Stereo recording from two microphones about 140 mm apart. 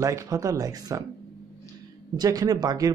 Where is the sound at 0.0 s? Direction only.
25° right (ahead or behind).